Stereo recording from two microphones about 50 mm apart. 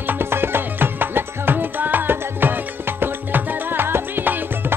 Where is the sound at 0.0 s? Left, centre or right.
Right.